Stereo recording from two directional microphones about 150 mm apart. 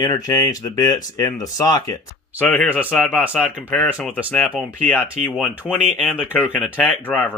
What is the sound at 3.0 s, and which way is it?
Speech, 5° right (ahead or behind).